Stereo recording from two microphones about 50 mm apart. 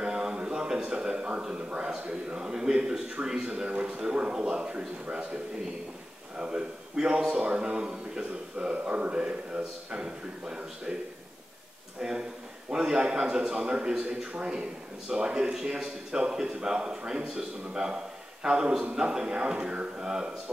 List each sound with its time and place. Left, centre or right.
0.0 s a sound: centre
1.5 s a man's voice: centre
12.0 s a man's voice: centre